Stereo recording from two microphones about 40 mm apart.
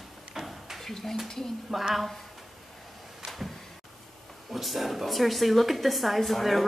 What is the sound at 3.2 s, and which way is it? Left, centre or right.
Door, centre.